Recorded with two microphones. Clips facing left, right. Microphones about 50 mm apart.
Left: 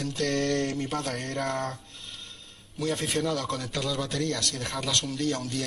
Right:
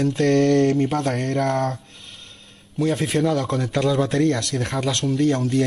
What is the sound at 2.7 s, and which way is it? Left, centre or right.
Speech, centre.